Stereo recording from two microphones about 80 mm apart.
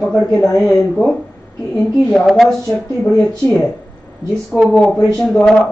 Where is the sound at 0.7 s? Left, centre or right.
Centre.